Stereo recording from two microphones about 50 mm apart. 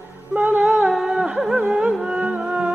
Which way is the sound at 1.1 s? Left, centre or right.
Centre.